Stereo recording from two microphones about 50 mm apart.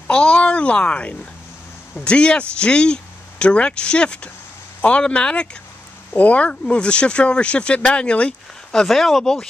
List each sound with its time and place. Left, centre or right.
0.1 s speech: centre
8.8 s speech: centre